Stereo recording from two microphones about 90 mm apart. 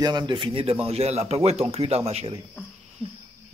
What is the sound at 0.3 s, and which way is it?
Speech, 65° right (ahead or behind).